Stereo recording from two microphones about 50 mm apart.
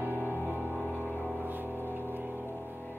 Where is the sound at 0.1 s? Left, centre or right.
Left.